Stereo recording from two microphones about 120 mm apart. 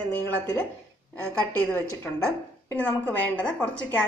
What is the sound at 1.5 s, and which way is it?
A woman's voice, 15° left (ahead or behind).